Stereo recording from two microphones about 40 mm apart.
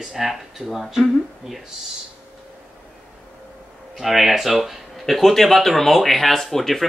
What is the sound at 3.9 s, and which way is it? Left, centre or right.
Speech, centre.